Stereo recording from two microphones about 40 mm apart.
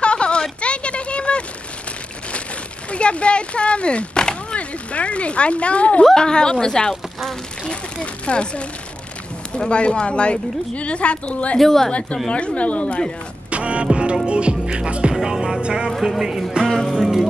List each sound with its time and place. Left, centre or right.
0.0 s a sound: left
2.9 s speech: left
6.1 s a woman's voice: centre
6.9 s speech: centre
7.6 s a woman's voice: left
11.5 s a woman's voice: centre
12.3 s a woman's voice: left
13.5 s music: right
15.1 s music: centre
16.0 s music: centre
16.6 s music: centre
16.9 s music: centre